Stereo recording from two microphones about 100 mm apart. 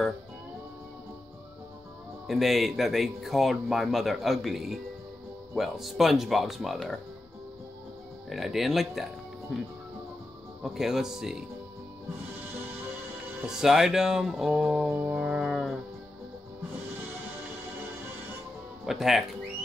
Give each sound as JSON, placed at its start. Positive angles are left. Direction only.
{"t": 2.2, "sound": "speech", "side_deg": 0}
{"t": 8.3, "sound": "speech", "side_deg": 0}
{"t": 10.6, "sound": "speech", "side_deg": -5}
{"t": 13.5, "sound": "speech", "side_deg": -5}
{"t": 14.9, "sound": "music", "side_deg": -20}
{"t": 15.1, "sound": "a sound", "side_deg": -5}
{"t": 18.9, "sound": "speech", "side_deg": -5}